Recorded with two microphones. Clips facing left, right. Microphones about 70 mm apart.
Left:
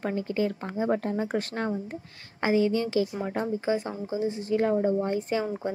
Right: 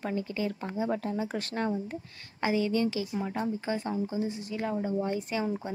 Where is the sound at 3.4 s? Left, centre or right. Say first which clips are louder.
Left 4 dB; left.